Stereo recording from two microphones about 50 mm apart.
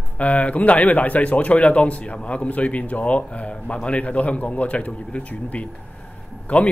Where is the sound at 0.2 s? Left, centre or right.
Left.